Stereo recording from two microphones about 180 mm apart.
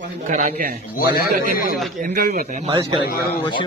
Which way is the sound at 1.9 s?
50° right (ahead or behind).